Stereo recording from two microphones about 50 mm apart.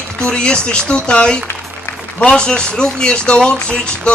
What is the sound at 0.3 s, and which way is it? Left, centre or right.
A man's voice, centre.